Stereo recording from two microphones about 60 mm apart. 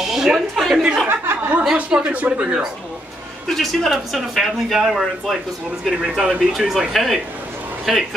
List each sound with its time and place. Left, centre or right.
0.0 s a woman's voice: centre
1.0 s speech: right
1.8 s speech: right
3.4 s speech: centre